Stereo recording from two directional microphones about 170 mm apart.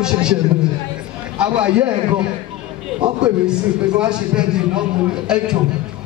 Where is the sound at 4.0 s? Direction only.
5° right (ahead or behind).